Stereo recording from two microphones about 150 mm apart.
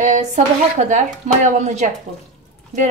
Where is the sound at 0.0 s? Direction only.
50° right (ahead or behind).